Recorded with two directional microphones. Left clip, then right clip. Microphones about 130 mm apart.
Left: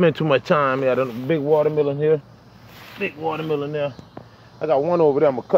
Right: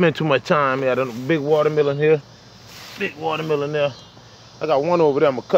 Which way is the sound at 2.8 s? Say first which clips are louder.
Right 1 dB; centre (ahead or behind).